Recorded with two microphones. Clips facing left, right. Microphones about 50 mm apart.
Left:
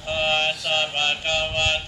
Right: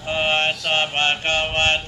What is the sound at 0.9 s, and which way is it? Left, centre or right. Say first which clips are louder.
Mantra: right 3 dB; right.